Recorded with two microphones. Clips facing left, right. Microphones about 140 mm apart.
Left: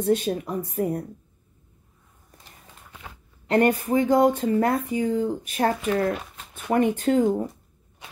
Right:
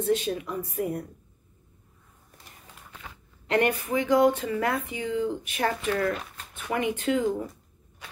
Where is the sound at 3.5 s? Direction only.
50° left (ahead or behind).